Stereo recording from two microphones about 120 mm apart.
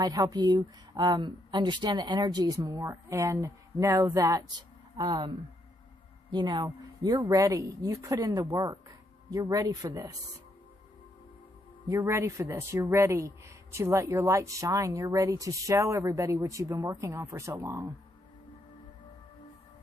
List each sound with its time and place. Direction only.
0.0 s speech: 35° right (ahead or behind)
6.3 s speech: 35° right (ahead or behind)
11.9 s speech: 25° right (ahead or behind)